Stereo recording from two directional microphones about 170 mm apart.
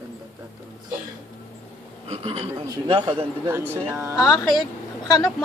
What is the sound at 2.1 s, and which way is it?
Speech, 40° right (ahead or behind).